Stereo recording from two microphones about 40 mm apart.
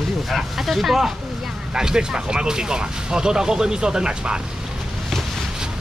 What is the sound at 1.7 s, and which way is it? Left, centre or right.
Speech, centre.